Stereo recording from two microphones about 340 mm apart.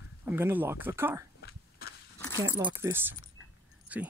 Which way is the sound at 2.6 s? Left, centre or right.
Centre.